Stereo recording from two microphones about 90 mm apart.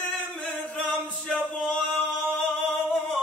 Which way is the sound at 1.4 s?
20° left (ahead or behind).